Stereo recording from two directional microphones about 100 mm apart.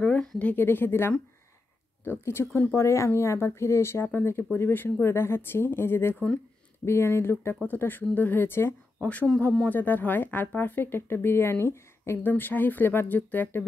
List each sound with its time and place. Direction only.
0.0 s a sound: 5° left (ahead or behind)
0.5 s speech: 20° left (ahead or behind)
9.7 s speech: 20° left (ahead or behind)